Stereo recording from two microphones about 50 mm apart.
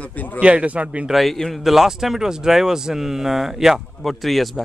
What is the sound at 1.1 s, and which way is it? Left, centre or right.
Speech, centre.